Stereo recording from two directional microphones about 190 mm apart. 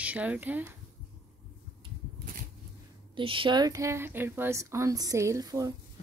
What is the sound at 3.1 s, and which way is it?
A woman's voice, 25° right (ahead or behind).